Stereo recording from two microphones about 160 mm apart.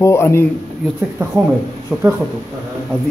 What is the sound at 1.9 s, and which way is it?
Speech, 15° right (ahead or behind).